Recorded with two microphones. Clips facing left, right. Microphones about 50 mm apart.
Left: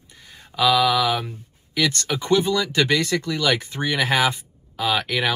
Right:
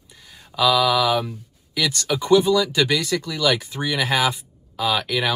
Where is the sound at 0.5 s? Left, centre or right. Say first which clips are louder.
Even; centre.